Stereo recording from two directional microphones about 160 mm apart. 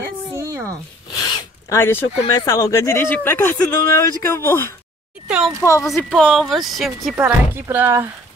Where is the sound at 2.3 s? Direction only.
20° left (ahead or behind).